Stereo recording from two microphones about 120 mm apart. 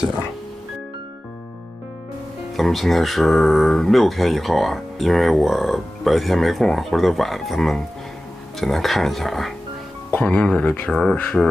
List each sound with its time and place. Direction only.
2.5 s speech: centre (ahead or behind)
11.1 s speech: 15° left (ahead or behind)